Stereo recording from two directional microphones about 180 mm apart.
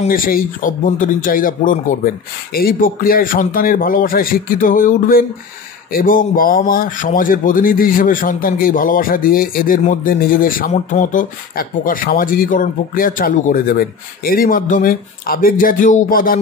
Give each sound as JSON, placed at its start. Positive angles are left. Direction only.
{"t": 0.1, "sound": "speech", "side_deg": 50}